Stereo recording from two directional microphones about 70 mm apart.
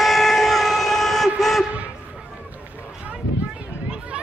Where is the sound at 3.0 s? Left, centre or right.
Centre.